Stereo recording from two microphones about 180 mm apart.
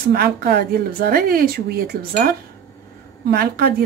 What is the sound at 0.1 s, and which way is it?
A woman's voice, 60° right (ahead or behind).